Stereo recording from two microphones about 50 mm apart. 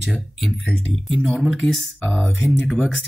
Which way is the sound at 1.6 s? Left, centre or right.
Centre.